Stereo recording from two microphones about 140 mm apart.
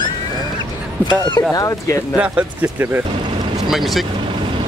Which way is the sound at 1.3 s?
25° left (ahead or behind).